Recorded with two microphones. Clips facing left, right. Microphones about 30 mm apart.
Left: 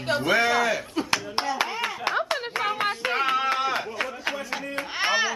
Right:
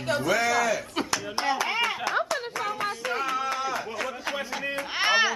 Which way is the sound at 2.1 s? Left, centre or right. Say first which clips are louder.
Left 1 dB; left.